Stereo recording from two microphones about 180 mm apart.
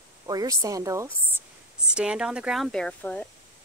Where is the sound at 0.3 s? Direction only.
20° right (ahead or behind).